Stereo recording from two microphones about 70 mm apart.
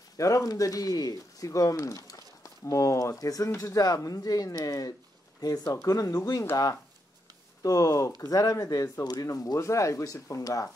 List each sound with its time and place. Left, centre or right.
0.2 s speech: left